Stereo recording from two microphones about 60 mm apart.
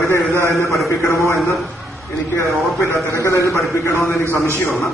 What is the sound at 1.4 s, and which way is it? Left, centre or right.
A man's voice, centre.